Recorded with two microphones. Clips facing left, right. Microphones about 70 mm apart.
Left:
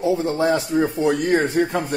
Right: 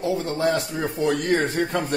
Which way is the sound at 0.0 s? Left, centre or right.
Centre.